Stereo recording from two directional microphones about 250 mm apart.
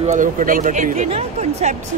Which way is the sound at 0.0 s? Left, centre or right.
Right.